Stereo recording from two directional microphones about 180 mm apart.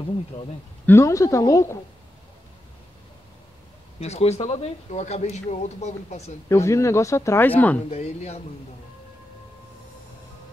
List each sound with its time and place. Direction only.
0.8 s speech: 15° left (ahead or behind)
4.0 s speech: 35° left (ahead or behind)
6.5 s speech: 15° left (ahead or behind)
7.9 s speech: 35° left (ahead or behind)